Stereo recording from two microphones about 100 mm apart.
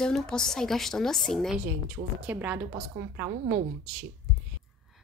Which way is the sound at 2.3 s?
15° right (ahead or behind).